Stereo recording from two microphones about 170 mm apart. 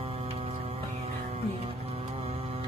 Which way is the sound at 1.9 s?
35° right (ahead or behind).